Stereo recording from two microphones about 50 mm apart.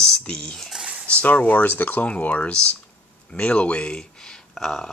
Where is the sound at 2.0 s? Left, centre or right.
Left.